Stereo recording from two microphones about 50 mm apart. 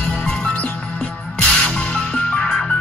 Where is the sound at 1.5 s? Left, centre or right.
Left.